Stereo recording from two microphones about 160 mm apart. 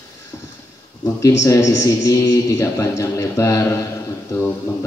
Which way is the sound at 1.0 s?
20° left (ahead or behind).